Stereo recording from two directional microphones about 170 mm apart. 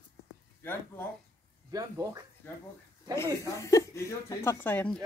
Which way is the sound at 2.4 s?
10° left (ahead or behind).